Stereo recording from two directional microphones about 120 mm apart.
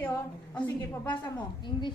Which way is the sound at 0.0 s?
15° left (ahead or behind).